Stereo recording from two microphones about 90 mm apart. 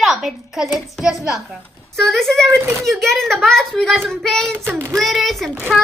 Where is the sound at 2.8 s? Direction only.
Centre (ahead or behind).